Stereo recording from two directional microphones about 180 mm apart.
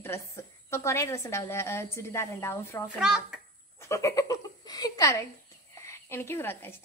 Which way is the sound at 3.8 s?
15° left (ahead or behind).